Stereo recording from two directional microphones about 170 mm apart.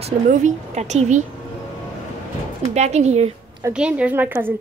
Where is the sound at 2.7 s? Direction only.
40° right (ahead or behind).